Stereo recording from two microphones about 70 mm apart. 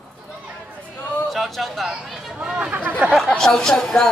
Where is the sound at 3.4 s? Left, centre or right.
Centre.